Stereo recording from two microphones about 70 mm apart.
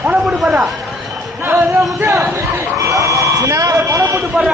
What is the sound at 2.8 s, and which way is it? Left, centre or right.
Buzzer, right.